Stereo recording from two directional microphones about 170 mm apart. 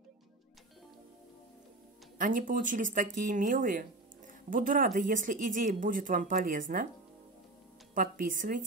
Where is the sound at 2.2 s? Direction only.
50° right (ahead or behind).